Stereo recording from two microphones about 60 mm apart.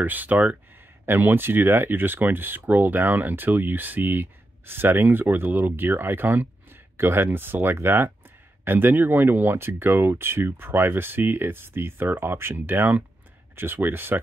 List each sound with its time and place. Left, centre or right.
0.0 s speech: right